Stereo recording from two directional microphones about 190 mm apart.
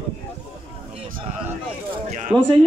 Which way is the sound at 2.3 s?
Centre (ahead or behind).